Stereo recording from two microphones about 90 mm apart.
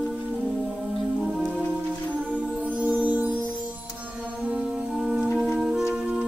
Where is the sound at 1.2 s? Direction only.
5° right (ahead or behind).